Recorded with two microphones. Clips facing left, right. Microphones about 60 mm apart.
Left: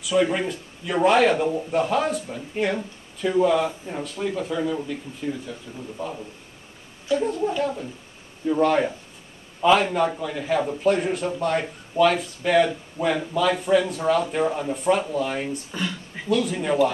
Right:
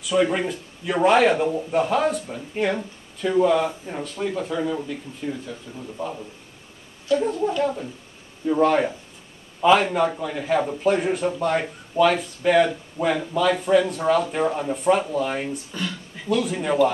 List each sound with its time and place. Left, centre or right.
0.0 s a man's voice: centre